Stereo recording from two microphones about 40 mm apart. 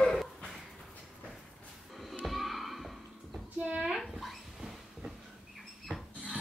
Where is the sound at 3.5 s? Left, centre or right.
Right.